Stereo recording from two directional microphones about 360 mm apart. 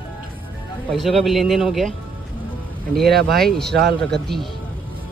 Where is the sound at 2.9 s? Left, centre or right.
Centre.